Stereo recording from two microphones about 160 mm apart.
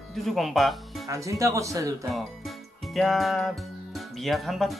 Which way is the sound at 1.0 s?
20° right (ahead or behind).